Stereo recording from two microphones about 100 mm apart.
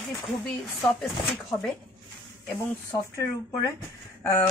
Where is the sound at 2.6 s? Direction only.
35° left (ahead or behind).